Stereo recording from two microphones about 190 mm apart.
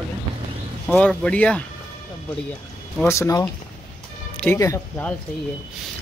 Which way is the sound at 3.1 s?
15° left (ahead or behind).